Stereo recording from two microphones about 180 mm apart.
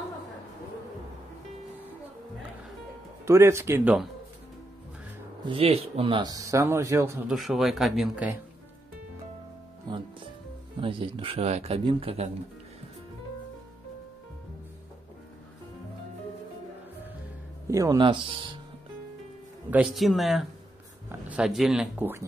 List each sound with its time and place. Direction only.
3.3 s speech: 15° right (ahead or behind)
5.4 s speech: 30° right (ahead or behind); by 7.2 s 15° right (ahead or behind)
7.2 s speech: centre (ahead or behind)
10.8 s speech: 30° right (ahead or behind)
17.6 s speech: 20° right (ahead or behind)
19.7 s speech: centre (ahead or behind)